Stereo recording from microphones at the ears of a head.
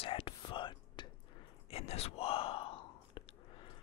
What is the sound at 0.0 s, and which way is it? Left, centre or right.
Whispering, left.